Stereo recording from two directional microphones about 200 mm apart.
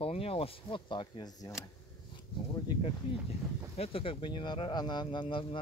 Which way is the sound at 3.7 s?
30° left (ahead or behind).